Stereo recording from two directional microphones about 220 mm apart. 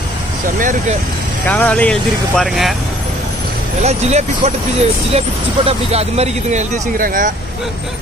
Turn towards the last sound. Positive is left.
turn(degrees=-40)  # may be behind; listen again after turning